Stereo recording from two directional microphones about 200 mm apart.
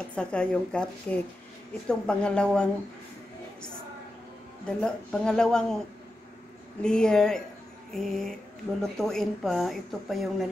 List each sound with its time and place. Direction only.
0.1 s a woman's voice: 5° left (ahead or behind)
4.6 s a woman's voice: 5° left (ahead or behind)
6.8 s a woman's voice: 5° left (ahead or behind)